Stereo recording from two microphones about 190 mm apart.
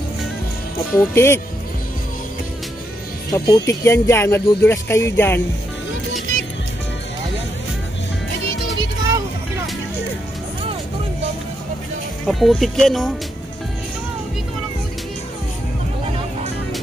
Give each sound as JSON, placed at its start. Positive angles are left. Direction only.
{"t": 0.9, "sound": "speech", "side_deg": 15}
{"t": 3.3, "sound": "speech", "side_deg": 15}
{"t": 12.3, "sound": "speech", "side_deg": 0}